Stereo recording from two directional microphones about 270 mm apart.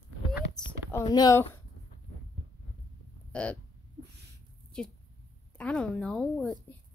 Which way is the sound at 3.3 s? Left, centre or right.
Centre.